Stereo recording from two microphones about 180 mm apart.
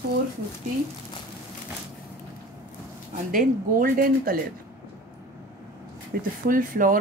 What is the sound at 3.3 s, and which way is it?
Speech, 50° right (ahead or behind).